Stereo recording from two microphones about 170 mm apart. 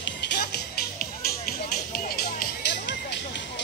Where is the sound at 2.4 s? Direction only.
85° left.